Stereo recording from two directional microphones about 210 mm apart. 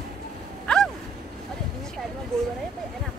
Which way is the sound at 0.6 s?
5° left (ahead or behind).